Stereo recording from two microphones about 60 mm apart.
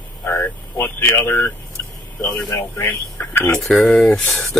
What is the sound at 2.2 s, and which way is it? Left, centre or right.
Vehicle, left.